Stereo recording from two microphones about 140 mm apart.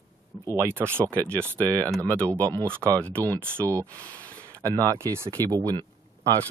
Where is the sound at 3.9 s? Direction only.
10° left (ahead or behind).